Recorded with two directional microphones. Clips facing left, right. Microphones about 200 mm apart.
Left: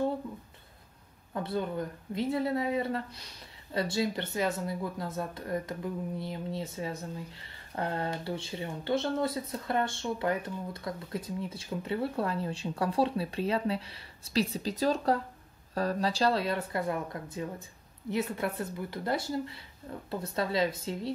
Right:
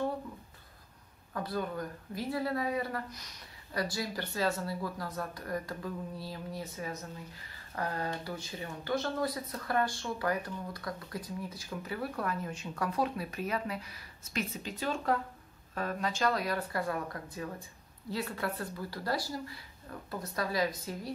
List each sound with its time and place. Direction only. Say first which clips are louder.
1.3 s speech: left 3 dB; 25° left (ahead or behind)